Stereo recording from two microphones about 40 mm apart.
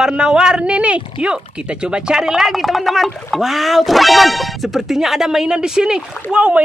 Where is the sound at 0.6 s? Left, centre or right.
Right; by 2.5 s centre.